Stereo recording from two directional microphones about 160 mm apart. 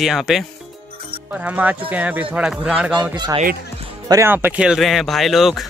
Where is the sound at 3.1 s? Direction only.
25° right (ahead or behind); by 5.6 s centre (ahead or behind).